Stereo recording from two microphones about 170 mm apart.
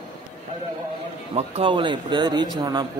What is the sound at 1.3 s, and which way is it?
Speech, 35° right (ahead or behind).